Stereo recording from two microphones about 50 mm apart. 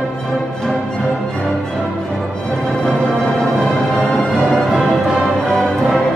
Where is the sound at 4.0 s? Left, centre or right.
Centre.